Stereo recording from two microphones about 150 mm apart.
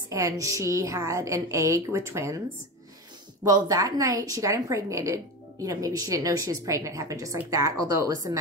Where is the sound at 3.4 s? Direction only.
25° right (ahead or behind).